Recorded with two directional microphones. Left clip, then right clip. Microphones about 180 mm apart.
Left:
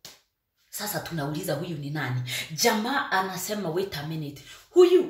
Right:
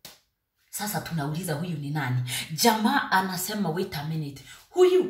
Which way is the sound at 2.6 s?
5° left (ahead or behind).